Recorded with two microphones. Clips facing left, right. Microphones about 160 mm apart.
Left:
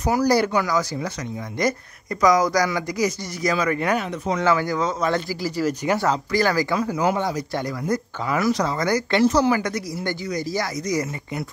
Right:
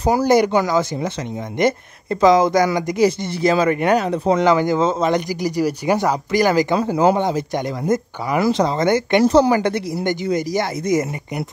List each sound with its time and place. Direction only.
0.0 s speech: 25° right (ahead or behind)
4.4 s a man's voice: 20° right (ahead or behind)
6.8 s speech: 30° right (ahead or behind)